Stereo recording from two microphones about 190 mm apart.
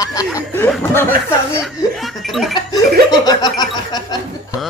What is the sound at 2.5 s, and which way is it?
Speech, 20° left (ahead or behind).